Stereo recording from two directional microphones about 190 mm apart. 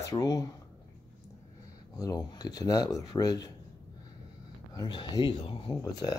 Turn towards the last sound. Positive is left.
turn(degrees=20)  # may be behind; listen again after turning